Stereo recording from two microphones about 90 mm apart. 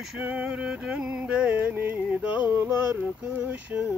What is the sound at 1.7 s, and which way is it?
Male singing, 20° right (ahead or behind).